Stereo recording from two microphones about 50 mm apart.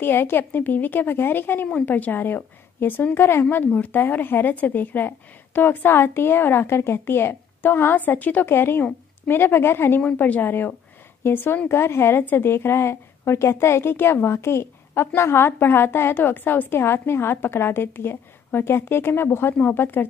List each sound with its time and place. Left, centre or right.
0.0 s a woman's voice: left
1.9 s speech: left
3.4 s speech: left
8.5 s a woman's voice: left
10.1 s a woman's voice: left
12.3 s speech: left
12.5 s a woman's voice: left
14.3 s a woman's voice: left